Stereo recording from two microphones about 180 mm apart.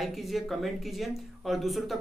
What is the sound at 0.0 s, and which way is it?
Speech, centre (ahead or behind).